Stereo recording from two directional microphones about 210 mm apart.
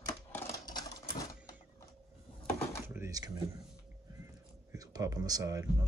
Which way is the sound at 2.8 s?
10° right (ahead or behind).